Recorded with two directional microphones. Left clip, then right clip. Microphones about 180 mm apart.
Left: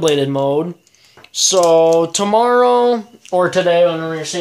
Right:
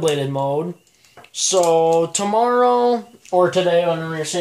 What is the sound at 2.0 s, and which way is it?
Speech, 40° left (ahead or behind).